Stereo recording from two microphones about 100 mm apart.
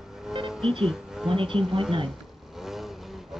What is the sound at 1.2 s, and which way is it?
Speech, 60° right (ahead or behind).